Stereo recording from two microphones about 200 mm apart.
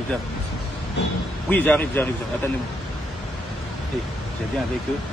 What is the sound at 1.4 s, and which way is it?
Speech, 5° left (ahead or behind).